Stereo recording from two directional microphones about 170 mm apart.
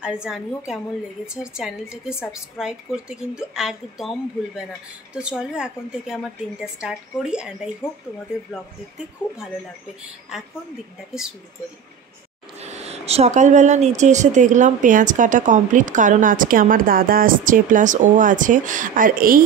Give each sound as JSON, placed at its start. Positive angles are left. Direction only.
{"t": 0.0, "sound": "a woman's voice", "side_deg": -5}
{"t": 12.6, "sound": "speech", "side_deg": -40}